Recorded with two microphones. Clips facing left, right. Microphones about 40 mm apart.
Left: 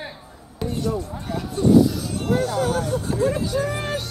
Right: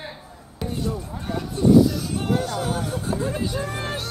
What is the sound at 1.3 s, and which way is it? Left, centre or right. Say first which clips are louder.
Speech: even; centre.